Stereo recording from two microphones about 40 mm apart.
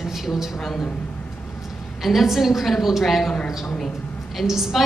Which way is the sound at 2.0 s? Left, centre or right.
Centre.